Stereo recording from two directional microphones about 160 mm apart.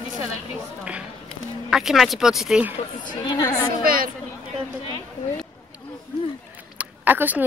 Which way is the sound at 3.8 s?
65° right (ahead or behind).